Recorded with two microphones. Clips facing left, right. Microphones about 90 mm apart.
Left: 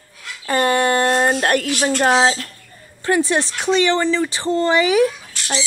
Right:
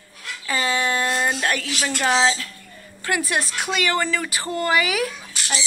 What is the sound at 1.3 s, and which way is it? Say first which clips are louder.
Speech: left 6 dB; 50° left (ahead or behind).